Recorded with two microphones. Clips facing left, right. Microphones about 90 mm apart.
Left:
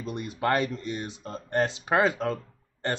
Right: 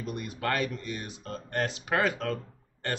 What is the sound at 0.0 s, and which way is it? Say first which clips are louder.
Speech: left 4 dB; 25° left (ahead or behind).